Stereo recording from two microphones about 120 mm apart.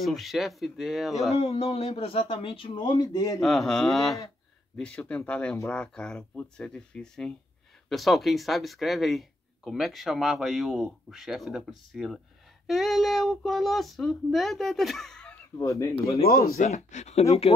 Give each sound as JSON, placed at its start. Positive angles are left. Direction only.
{"t": 0.0, "sound": "speech", "side_deg": 0}
{"t": 1.3, "sound": "speech", "side_deg": 60}
{"t": 3.3, "sound": "speech", "side_deg": 0}
{"t": 15.5, "sound": "speech", "side_deg": 25}
{"t": 16.2, "sound": "speech", "side_deg": 70}